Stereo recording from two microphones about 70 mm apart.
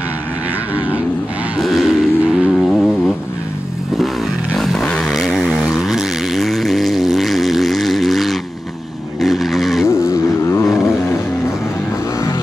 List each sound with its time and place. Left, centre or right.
1.6 s vehicle: centre
2.5 s a sound: centre
4.8 s vehicle: centre
5.1 s vehicle: centre
10.0 s vehicle: left